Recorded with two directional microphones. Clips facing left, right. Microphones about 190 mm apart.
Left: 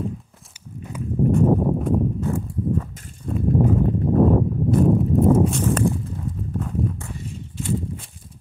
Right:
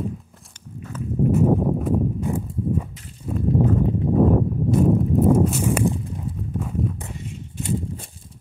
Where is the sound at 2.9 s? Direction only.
50° left (ahead or behind).